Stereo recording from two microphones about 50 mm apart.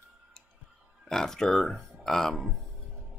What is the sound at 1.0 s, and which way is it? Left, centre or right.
Speech, centre.